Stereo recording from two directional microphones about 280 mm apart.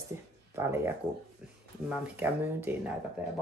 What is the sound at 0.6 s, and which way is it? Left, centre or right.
Speech, centre.